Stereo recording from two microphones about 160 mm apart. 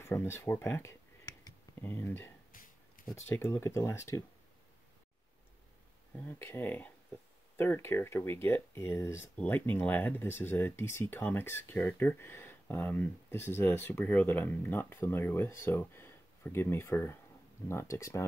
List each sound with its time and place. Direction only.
0.0 s speech: 15° left (ahead or behind)
6.1 s speech: 15° left (ahead or behind)